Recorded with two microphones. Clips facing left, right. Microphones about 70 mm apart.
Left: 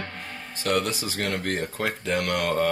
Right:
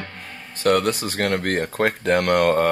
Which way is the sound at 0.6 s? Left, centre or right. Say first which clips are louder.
Right 7 dB; right.